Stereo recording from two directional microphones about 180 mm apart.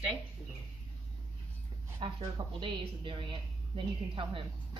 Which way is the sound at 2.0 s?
25° right (ahead or behind).